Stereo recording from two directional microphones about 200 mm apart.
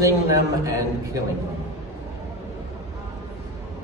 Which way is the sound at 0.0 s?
15° right (ahead or behind).